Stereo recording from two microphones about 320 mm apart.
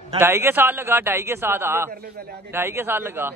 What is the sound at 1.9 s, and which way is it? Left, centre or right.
Speech, right.